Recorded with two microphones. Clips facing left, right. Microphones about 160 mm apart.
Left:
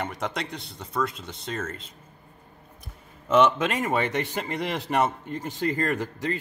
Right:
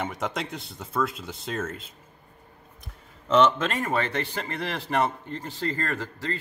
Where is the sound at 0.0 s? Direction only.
Centre (ahead or behind).